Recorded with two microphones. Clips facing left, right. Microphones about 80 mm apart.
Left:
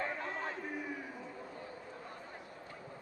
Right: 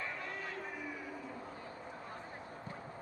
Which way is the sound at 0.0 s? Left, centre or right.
Left.